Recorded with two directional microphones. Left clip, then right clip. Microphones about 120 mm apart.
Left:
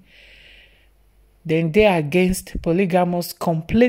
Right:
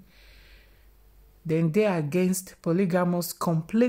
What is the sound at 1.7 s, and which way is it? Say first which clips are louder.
Speech: left 10 dB; 20° left (ahead or behind).